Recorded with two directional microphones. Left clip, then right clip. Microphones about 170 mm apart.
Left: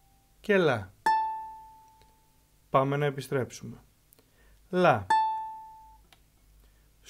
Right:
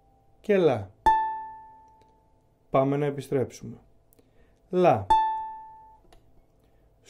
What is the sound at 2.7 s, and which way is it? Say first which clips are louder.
Speech: right 2 dB; 40° left (ahead or behind).